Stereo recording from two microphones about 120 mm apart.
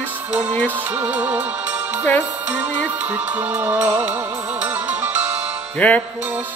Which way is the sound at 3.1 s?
15° right (ahead or behind).